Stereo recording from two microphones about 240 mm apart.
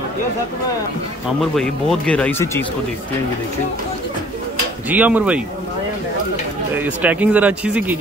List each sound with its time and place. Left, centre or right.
1.5 s speech: centre
4.8 s speech: centre
6.7 s speech: centre